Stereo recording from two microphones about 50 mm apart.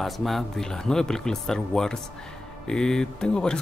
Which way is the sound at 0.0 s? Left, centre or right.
Centre.